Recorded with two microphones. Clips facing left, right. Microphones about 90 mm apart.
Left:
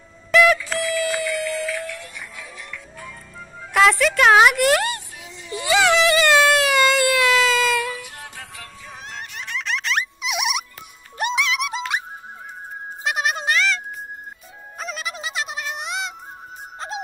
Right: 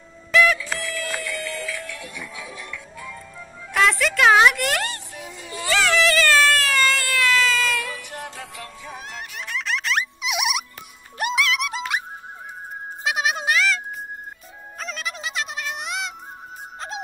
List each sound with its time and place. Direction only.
0.3 s music: 5° left (ahead or behind)
3.7 s a sound: centre (ahead or behind)
5.1 s a sound: 50° right (ahead or behind)
5.6 s baby cry: 15° left (ahead or behind)
9.1 s music: centre (ahead or behind)
13.0 s music: centre (ahead or behind)
14.8 s music: 5° left (ahead or behind)